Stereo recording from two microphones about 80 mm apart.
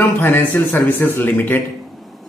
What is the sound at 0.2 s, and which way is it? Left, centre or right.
Speech, left.